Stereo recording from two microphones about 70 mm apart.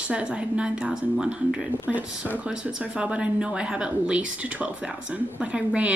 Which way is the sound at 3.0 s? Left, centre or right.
Centre.